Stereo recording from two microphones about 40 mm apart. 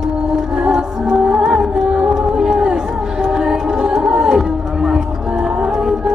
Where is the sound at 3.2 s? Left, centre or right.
Centre.